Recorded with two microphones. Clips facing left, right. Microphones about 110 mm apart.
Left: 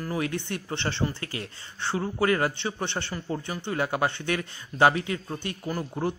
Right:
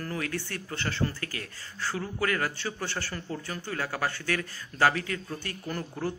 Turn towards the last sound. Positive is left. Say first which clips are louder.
# left 4 dB
turn(degrees=20)  # may be behind; listen again after turning